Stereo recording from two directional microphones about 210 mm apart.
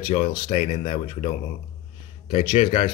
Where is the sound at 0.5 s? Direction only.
35° left (ahead or behind).